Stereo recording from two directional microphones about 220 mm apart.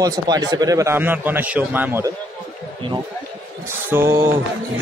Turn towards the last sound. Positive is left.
turn(degrees=-10)  # may be behind; listen again after turning